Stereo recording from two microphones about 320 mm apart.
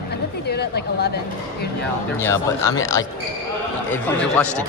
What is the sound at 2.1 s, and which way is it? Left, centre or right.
Speech, centre.